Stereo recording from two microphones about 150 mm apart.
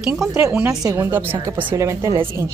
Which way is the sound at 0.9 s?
20° right (ahead or behind).